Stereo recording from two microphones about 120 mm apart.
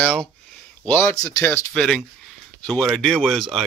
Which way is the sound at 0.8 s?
15° left (ahead or behind).